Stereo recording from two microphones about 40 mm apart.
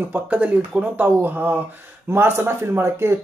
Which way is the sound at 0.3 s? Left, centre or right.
Right.